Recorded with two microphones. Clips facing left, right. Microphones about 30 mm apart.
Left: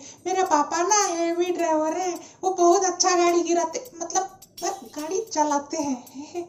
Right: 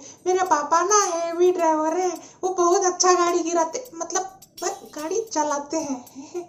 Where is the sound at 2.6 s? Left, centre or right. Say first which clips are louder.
Right 1 dB; left.